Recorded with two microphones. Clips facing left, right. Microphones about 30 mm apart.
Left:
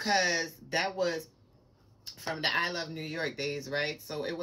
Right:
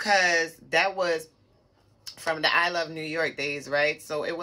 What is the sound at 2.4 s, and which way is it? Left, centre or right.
Speech, right.